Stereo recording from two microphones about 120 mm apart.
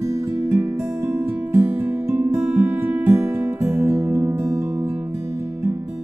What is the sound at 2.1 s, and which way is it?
Music, 20° right (ahead or behind).